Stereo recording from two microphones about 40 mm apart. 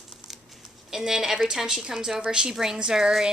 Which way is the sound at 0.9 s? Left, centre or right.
Centre.